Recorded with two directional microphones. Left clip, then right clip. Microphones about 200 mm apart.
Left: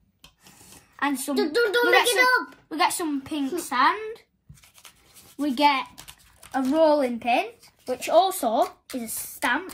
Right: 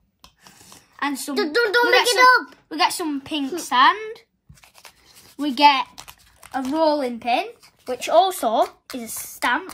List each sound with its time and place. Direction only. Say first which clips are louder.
0.7 s speech: right 1 dB; centre (ahead or behind)
1.5 s speech: right 3 dB; 30° right (ahead or behind)
2.7 s speech: right 3 dB; 15° right (ahead or behind)
4.6 s a sound: right 4 dB; centre (ahead or behind)
5.6 s a child's voice: right 6 dB; 20° right (ahead or behind)
5.9 s typing: right 4 dB; centre (ahead or behind)
8.2 s a woman's voice: right 3 dB; centre (ahead or behind)